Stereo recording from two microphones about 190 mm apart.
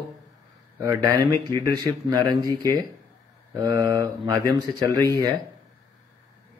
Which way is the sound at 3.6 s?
20° right (ahead or behind).